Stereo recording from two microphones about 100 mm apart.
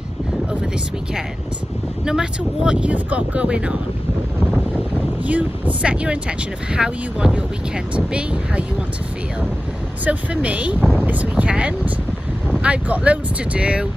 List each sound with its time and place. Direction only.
2.0 s speech: 5° right (ahead or behind)
4.5 s wind noise: 10° right (ahead or behind)
6.7 s speech: 10° right (ahead or behind)
10.0 s speech: 15° right (ahead or behind)